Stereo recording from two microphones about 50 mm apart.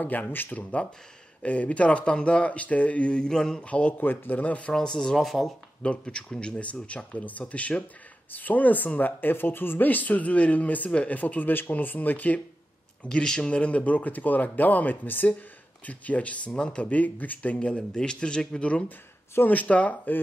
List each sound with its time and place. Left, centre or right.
0.0 s speech: left; by 3.6 s centre
3.6 s speech: left
4.0 s speech: left
4.7 s speech: centre
5.1 s speech: centre
5.8 s speech: left
13.2 s speech: centre
13.5 s speech: left